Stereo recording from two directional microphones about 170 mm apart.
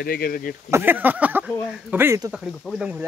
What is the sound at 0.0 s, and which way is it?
Speech, 60° left (ahead or behind).